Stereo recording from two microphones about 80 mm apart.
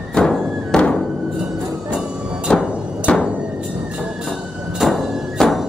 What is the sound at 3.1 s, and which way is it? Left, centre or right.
Hammer, centre.